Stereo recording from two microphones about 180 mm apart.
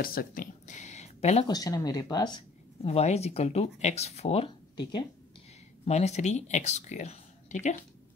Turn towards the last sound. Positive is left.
turn(degrees=40)  # may be behind; listen again after turning